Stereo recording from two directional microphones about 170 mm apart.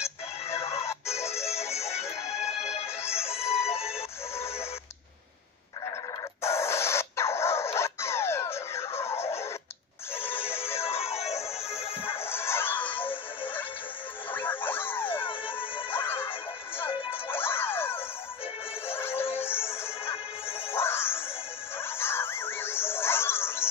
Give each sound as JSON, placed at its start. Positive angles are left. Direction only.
{"t": 0.5, "sound": "music", "side_deg": 15}
{"t": 1.5, "sound": "music", "side_deg": 40}
{"t": 3.0, "sound": "music", "side_deg": 15}
{"t": 3.6, "sound": "music", "side_deg": 35}
{"t": 6.4, "sound": "a sound", "side_deg": 15}
{"t": 10.1, "sound": "synthetic singing", "side_deg": 10}
{"t": 10.7, "sound": "music", "side_deg": 15}
{"t": 11.0, "sound": "music", "side_deg": 35}
{"t": 12.1, "sound": "music", "side_deg": 15}
{"t": 15.2, "sound": "music", "side_deg": 30}
{"t": 15.9, "sound": "siren", "side_deg": 10}
{"t": 17.3, "sound": "music", "side_deg": 15}